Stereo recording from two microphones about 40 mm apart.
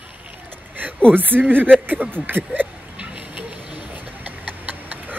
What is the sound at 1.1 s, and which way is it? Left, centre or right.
Speech, right.